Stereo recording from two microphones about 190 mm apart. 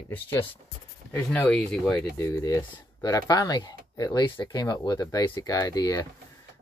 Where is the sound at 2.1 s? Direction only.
15° left (ahead or behind).